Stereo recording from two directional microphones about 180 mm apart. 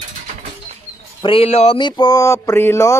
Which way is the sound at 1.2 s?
30° left (ahead or behind).